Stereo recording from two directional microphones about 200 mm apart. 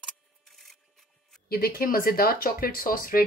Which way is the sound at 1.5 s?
50° left (ahead or behind).